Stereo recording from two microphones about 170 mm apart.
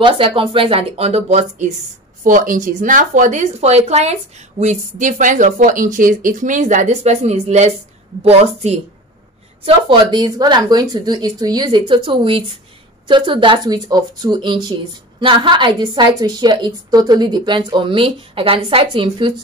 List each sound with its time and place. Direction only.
0.0 s speech: 30° right (ahead or behind)
2.2 s speech: 50° right (ahead or behind)
9.7 s speech: 25° right (ahead or behind)